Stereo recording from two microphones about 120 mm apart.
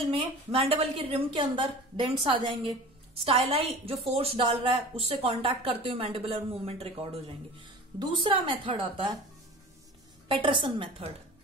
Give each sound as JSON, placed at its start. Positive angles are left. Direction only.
{"t": 0.1, "sound": "a woman's voice", "side_deg": -50}
{"t": 10.2, "sound": "a woman's voice", "side_deg": -45}